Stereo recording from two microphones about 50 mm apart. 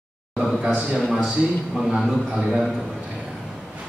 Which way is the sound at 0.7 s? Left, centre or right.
Right.